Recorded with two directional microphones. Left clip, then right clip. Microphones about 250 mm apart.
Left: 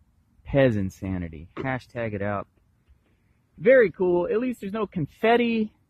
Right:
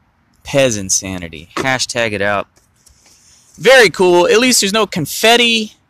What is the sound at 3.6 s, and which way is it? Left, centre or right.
Speech, centre.